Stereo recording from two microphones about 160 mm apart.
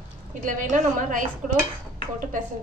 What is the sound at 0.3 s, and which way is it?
Speech, 55° right (ahead or behind).